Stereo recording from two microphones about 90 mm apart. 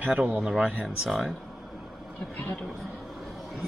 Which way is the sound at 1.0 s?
Centre (ahead or behind).